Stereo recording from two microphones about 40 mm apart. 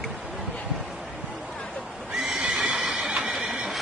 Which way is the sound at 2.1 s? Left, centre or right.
Centre.